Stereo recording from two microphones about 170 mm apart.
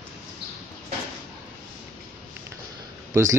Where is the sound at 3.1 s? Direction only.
15° right (ahead or behind).